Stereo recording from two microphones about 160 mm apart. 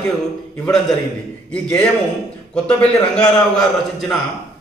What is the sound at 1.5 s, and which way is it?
A man's voice, 5° left (ahead or behind).